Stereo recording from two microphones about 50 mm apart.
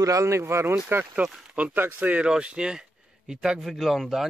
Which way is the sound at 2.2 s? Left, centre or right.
Centre.